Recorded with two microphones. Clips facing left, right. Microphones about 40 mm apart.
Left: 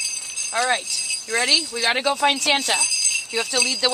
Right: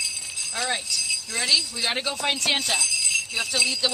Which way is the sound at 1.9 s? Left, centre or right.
Left.